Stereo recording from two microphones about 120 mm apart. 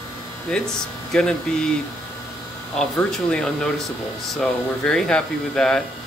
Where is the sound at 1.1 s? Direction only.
5° left (ahead or behind).